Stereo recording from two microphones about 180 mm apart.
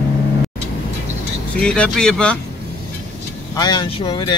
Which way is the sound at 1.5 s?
5° left (ahead or behind).